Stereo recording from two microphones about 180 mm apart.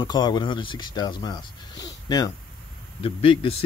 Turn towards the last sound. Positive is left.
turn(degrees=30)  # may be behind; listen again after turning